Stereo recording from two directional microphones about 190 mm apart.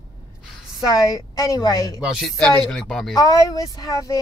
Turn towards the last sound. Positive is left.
turn(degrees=20)  # may be behind; listen again after turning